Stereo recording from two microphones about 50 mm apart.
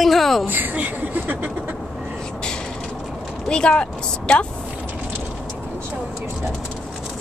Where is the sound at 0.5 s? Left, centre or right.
Right.